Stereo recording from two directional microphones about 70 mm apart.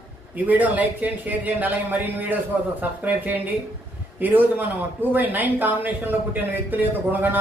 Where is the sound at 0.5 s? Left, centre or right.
Right.